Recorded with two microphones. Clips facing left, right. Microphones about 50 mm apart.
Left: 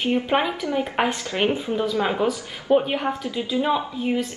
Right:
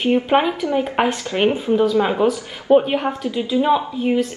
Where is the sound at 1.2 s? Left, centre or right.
Right.